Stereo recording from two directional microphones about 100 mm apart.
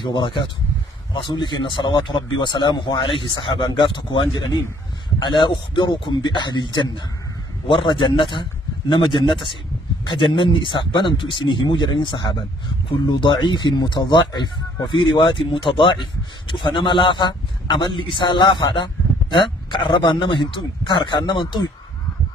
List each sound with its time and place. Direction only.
0.0 s a man's voice: 50° left (ahead or behind)